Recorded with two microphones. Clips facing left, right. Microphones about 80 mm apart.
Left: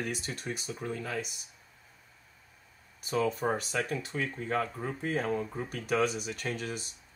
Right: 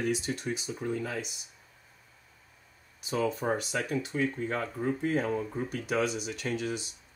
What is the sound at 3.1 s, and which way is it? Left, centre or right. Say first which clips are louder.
Speech: even; left.